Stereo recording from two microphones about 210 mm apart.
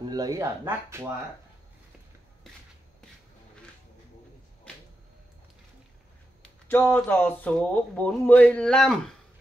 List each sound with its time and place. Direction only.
0.0 s speech: 20° right (ahead or behind)
6.7 s speech: 10° left (ahead or behind)